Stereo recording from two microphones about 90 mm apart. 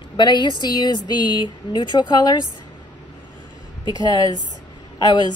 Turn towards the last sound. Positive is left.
turn(degrees=50)  # may be behind; listen again after turning